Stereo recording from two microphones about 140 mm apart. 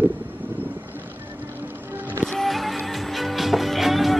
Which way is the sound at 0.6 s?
15° right (ahead or behind).